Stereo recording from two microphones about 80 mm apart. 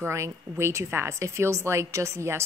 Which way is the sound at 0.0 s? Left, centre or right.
Right.